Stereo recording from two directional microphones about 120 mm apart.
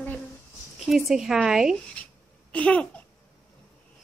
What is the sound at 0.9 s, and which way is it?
Speech, 5° right (ahead or behind).